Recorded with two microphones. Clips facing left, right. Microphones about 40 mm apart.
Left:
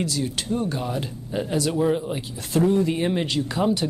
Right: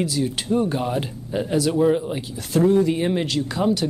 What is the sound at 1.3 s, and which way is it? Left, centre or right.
Speech, centre.